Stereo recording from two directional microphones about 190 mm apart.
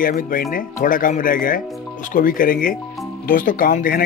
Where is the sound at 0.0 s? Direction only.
45° left (ahead or behind).